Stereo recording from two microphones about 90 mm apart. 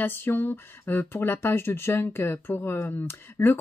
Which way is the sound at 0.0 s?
25° left (ahead or behind).